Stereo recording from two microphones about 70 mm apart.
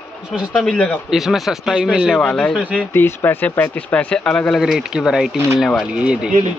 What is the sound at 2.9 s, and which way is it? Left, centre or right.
Speech, left.